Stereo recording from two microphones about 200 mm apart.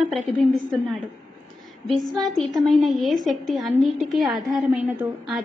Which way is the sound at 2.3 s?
Centre (ahead or behind).